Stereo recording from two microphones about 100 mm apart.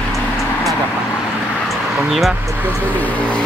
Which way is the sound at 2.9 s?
15° left (ahead or behind).